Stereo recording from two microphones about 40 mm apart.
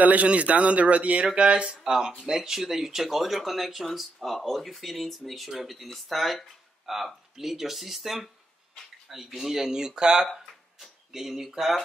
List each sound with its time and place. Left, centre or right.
0.0 s speech: right
1.8 s speech: centre
10.2 s a sound: centre